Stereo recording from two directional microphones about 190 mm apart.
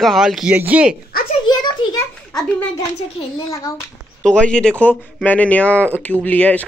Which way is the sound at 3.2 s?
20° left (ahead or behind).